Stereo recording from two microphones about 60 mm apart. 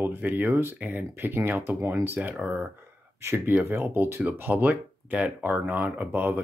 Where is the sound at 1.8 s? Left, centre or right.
Right.